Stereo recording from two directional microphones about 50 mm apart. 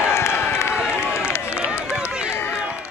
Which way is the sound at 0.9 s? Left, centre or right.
Left.